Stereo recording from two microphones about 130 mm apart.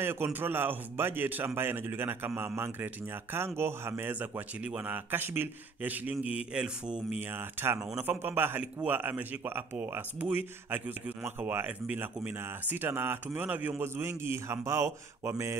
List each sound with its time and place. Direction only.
0.0 s a man's voice: 15° right (ahead or behind)